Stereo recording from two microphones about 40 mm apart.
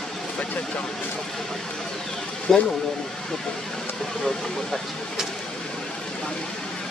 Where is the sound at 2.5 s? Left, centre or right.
Centre.